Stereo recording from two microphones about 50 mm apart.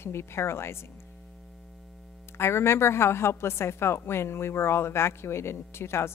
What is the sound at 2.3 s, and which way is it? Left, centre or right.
A woman's voice, left.